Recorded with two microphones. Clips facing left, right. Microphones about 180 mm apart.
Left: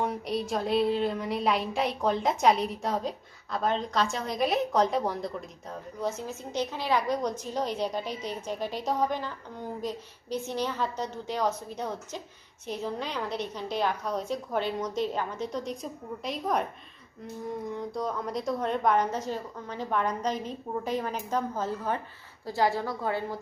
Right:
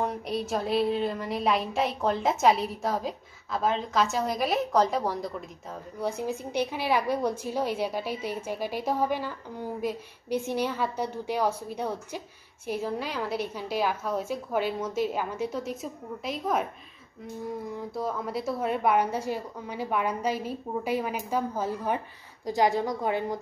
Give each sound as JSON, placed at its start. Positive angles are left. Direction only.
{"t": 0.0, "sound": "speech", "side_deg": 0}
{"t": 5.9, "sound": "a woman's voice", "side_deg": -15}
{"t": 17.7, "sound": "a woman's voice", "side_deg": -5}